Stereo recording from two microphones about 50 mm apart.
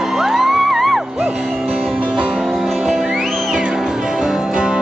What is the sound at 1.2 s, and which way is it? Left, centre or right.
Music, centre.